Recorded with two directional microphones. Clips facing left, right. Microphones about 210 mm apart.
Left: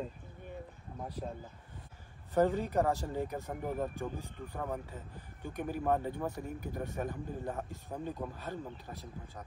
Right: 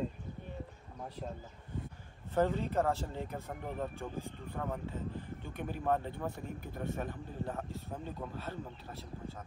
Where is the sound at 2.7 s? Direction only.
15° left (ahead or behind).